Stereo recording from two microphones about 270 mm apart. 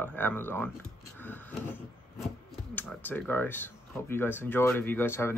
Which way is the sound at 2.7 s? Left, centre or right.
Centre.